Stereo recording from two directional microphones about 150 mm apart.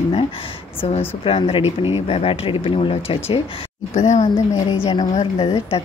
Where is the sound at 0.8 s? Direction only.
40° left (ahead or behind).